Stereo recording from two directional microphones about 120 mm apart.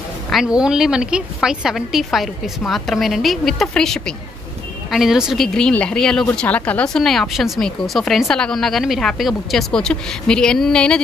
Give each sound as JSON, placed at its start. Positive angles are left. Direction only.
{"t": 0.3, "sound": "speech", "side_deg": -5}